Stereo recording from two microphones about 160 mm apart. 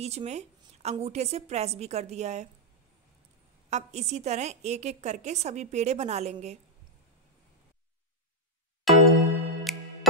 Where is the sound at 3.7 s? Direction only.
45° right (ahead or behind).